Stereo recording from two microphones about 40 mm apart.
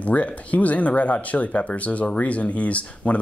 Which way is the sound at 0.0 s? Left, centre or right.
Left.